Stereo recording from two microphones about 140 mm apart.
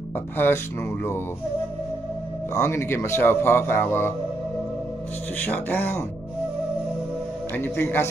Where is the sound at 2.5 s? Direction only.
20° left (ahead or behind).